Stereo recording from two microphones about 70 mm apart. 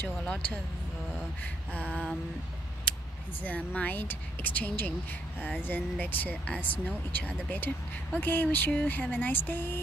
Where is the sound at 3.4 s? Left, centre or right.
Left.